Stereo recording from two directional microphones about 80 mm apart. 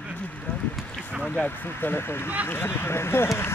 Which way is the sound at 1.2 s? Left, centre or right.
Centre.